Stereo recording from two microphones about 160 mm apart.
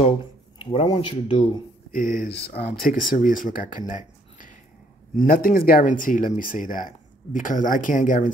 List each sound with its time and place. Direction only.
0.0 s speech: 35° left (ahead or behind)
2.0 s speech: 75° left (ahead or behind); by 2.6 s 90° left
2.9 s speech: 60° left (ahead or behind)